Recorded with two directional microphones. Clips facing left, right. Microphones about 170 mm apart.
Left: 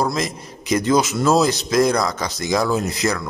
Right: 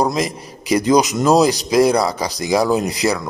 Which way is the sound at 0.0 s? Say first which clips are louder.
Right 3 dB; 15° right (ahead or behind).